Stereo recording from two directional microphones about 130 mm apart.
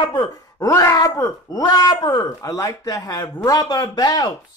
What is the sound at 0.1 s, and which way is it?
Speech, 30° left (ahead or behind).